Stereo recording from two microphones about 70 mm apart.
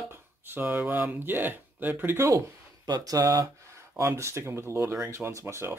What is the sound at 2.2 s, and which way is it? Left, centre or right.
Speech, right.